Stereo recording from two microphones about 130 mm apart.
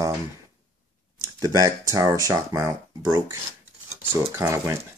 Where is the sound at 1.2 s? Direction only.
25° right (ahead or behind).